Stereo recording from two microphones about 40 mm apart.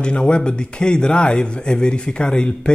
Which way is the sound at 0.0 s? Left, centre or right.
Left.